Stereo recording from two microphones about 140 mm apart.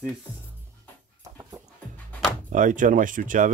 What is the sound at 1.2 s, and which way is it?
Dog, 20° right (ahead or behind).